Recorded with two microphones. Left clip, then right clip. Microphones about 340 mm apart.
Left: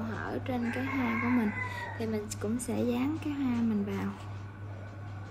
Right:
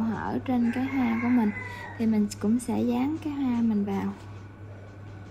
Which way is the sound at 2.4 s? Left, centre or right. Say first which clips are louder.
Right 7 dB; right.